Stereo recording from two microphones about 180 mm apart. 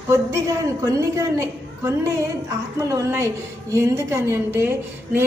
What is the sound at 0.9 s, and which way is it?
A woman's voice, 15° right (ahead or behind).